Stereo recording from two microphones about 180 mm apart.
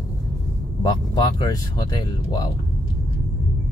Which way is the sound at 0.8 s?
25° left (ahead or behind).